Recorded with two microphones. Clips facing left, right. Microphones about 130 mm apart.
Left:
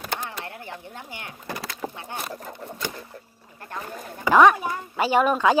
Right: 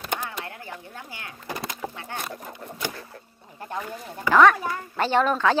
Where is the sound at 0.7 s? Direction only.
20° left (ahead or behind).